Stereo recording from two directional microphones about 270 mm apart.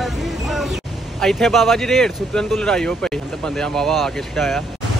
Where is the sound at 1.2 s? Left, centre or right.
Centre.